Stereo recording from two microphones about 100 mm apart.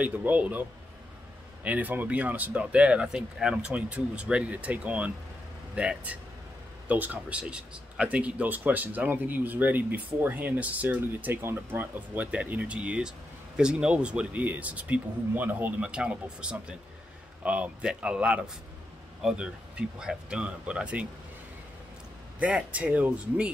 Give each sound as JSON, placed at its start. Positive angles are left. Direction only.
{"t": 0.0, "sound": "speech", "side_deg": -15}
{"t": 22.4, "sound": "speech", "side_deg": -15}